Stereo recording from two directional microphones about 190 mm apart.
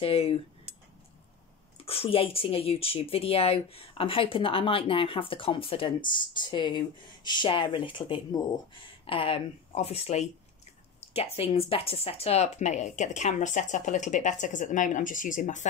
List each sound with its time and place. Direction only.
0.0 s speech: 30° left (ahead or behind)
1.8 s speech: 30° left (ahead or behind)